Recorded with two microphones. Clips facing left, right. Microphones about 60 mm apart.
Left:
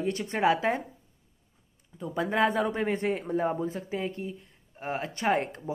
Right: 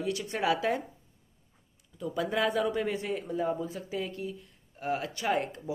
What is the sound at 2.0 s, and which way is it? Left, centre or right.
Speech, left.